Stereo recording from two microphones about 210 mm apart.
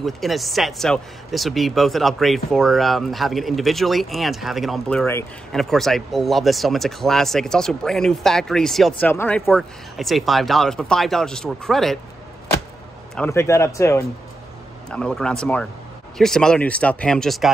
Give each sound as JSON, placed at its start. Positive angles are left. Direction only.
{"t": 0.0, "sound": "speech", "side_deg": 0}
{"t": 13.1, "sound": "speech", "side_deg": 10}